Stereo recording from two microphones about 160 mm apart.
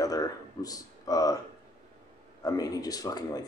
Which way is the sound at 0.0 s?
20° left (ahead or behind).